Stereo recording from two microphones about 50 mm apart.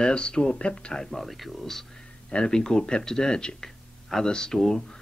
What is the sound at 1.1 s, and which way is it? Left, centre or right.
Speech, centre.